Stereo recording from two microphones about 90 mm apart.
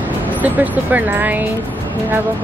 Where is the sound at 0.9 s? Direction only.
20° right (ahead or behind).